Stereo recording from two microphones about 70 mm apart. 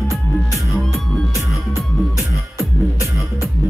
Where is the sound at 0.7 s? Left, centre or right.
Centre.